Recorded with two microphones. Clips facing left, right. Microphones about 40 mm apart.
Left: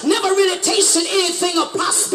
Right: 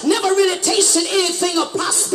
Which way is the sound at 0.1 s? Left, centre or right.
Centre.